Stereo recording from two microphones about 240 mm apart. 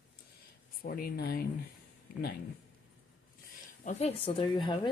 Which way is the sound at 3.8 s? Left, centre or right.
Left.